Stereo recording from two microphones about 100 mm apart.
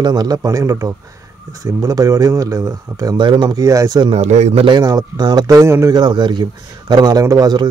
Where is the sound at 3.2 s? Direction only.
55° right (ahead or behind).